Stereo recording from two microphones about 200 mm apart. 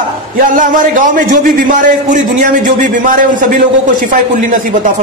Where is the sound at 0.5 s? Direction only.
40° right (ahead or behind).